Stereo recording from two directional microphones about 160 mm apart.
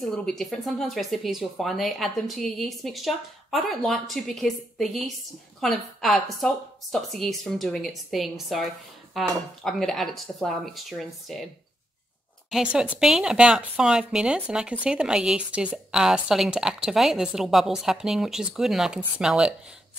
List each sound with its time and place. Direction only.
0.0 s speech: centre (ahead or behind)
12.4 s speech: 5° right (ahead or behind)